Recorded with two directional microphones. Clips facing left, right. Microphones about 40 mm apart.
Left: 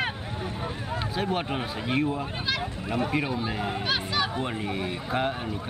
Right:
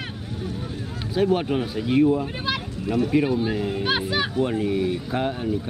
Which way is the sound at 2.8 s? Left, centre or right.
Left.